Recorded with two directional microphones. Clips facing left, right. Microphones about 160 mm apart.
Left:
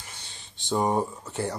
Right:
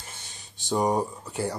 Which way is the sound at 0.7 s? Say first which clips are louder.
Even; 15° right (ahead or behind).